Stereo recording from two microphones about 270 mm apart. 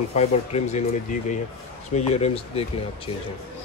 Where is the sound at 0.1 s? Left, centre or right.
Left.